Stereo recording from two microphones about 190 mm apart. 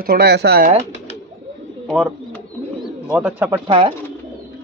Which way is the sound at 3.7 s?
25° right (ahead or behind).